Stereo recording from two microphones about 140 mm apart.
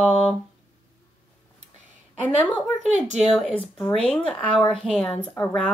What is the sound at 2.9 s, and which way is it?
Speech, 55° right (ahead or behind).